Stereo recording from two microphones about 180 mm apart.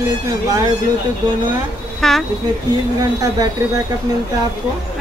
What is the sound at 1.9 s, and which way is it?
Speech, centre (ahead or behind).